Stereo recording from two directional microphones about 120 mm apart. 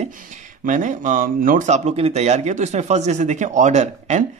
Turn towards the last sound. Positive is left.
turn(degrees=-75)  # may be behind; listen again after turning